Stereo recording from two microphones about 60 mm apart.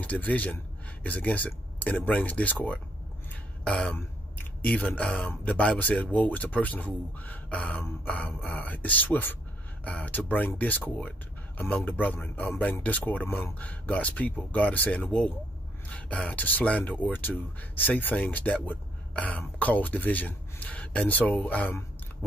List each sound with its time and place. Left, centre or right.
0.0 s speech: left